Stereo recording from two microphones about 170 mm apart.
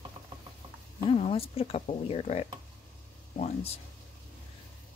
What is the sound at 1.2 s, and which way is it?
Speech, 35° left (ahead or behind).